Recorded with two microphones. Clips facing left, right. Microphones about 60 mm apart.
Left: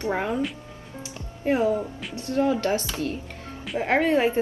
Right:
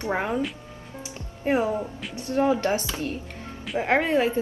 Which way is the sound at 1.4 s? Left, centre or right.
Right.